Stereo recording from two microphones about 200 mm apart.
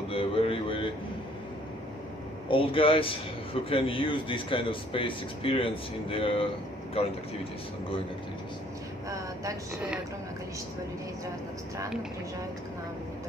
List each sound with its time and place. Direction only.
0.1 s a sound: 30° left (ahead or behind)
2.4 s speech: 25° left (ahead or behind)
9.1 s vehicle: 15° right (ahead or behind)